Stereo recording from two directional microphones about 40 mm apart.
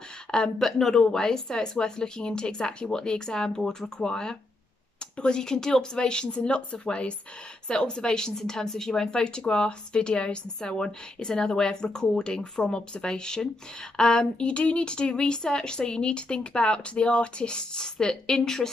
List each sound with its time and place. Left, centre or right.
0.6 s speech: centre